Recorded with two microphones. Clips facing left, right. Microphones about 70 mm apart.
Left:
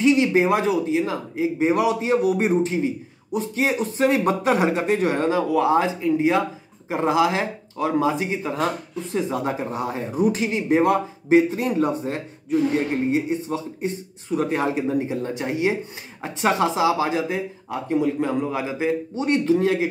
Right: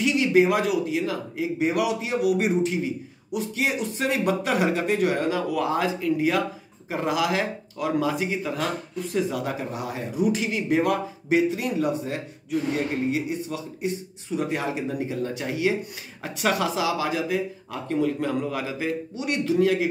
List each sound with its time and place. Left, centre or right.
0.0 s speech: left
17.8 s speech: centre